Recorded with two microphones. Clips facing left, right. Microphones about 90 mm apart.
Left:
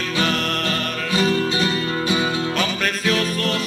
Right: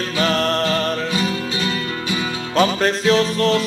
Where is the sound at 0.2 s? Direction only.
35° right (ahead or behind).